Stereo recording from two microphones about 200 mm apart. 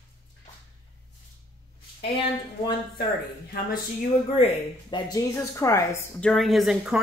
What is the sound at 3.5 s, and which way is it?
Speech, 45° left (ahead or behind).